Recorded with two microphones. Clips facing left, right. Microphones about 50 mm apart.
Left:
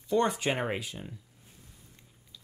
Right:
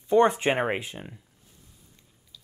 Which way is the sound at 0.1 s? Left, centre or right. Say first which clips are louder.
Right 7 dB; right.